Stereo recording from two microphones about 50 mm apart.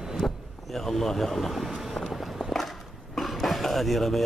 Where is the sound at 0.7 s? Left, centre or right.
Centre.